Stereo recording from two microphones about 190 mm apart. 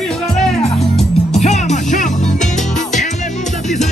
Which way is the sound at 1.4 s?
40° left (ahead or behind).